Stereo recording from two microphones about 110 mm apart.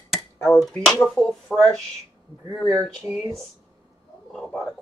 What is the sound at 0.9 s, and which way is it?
Speech, 10° left (ahead or behind).